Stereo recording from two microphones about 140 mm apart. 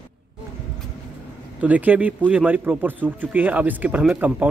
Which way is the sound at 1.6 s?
10° right (ahead or behind).